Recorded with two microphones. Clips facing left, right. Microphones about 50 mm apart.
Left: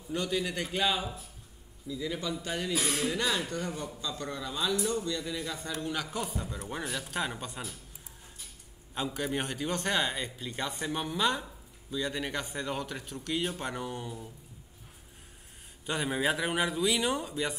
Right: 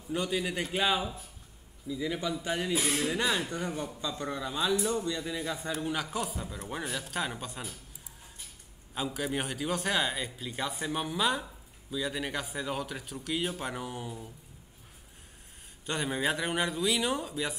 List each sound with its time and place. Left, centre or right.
0.1 s a man's voice: centre
8.9 s a man's voice: centre
15.8 s a man's voice: centre